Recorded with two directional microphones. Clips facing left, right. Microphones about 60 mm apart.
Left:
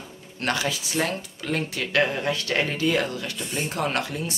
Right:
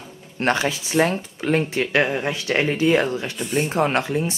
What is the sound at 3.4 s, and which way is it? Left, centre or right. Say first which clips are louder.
Speech: right 8 dB; centre.